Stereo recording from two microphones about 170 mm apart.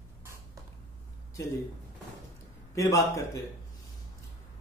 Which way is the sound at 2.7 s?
20° left (ahead or behind).